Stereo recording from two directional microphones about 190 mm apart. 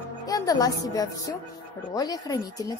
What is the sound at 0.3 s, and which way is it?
A woman's voice, 20° left (ahead or behind).